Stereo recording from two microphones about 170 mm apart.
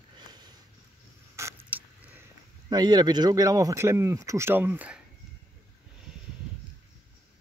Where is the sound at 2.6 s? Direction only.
25° right (ahead or behind).